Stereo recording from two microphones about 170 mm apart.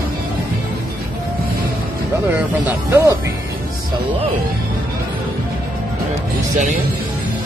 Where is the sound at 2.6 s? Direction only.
10° right (ahead or behind).